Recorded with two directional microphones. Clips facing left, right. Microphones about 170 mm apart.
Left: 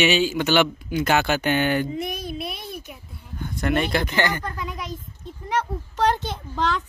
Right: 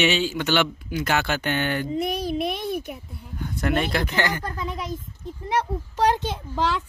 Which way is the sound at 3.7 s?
Centre (ahead or behind).